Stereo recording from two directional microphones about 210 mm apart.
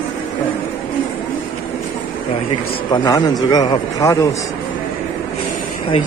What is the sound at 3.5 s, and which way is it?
Speech, 20° left (ahead or behind).